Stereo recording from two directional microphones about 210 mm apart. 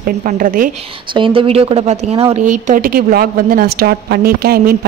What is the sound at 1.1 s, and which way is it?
A woman's voice, 25° right (ahead or behind).